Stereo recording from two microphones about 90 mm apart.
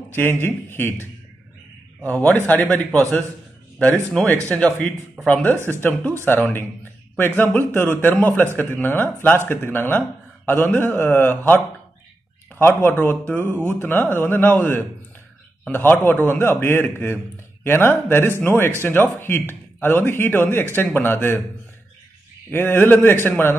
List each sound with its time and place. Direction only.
0.1 s speech: 25° left (ahead or behind)
2.0 s a man's voice: 15° left (ahead or behind)
22.5 s speech: 25° left (ahead or behind)